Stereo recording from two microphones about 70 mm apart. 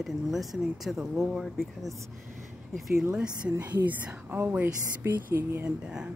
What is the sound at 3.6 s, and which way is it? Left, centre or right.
Speech, right.